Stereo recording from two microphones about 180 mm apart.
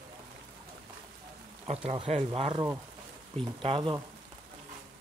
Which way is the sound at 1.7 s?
30° right (ahead or behind).